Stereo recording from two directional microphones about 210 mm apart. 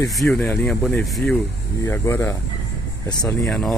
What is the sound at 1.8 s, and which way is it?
Speech, 15° left (ahead or behind).